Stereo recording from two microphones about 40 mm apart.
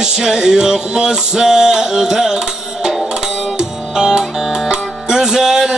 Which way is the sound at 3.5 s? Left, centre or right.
Right.